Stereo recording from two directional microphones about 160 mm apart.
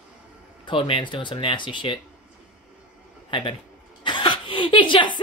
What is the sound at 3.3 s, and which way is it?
Speech, 30° left (ahead or behind).